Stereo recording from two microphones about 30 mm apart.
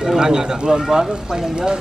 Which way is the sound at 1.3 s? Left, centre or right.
Right.